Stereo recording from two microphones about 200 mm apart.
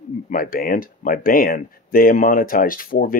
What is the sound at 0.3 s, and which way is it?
Speech, 45° left (ahead or behind).